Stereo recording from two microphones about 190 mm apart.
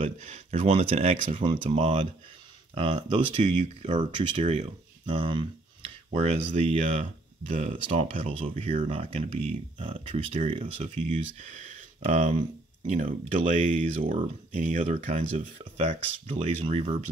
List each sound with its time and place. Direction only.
0.0 s speech: 35° right (ahead or behind)
4.2 s speech: 35° right (ahead or behind)
7.4 s speech: 45° right (ahead or behind)
7.9 s speech: 30° right (ahead or behind)